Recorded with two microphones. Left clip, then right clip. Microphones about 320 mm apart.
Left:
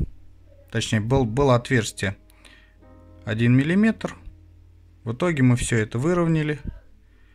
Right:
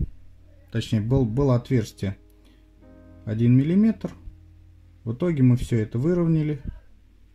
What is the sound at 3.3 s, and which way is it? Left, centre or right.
Speech, left.